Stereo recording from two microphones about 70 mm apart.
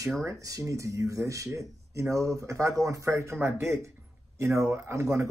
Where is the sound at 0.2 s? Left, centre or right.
Right.